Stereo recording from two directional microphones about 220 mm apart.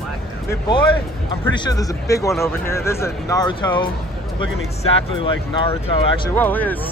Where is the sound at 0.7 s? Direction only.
25° left (ahead or behind).